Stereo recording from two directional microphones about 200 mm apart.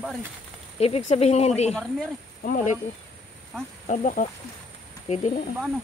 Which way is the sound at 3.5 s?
Centre (ahead or behind).